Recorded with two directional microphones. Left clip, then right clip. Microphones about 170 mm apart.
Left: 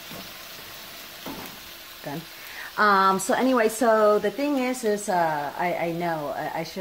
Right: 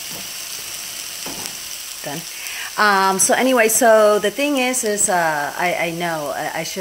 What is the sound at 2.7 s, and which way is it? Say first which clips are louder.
Speech: right 4 dB; centre (ahead or behind).